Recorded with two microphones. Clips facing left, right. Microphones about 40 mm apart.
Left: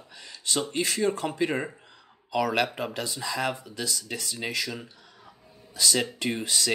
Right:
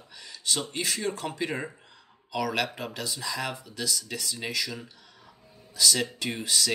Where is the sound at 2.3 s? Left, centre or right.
Left.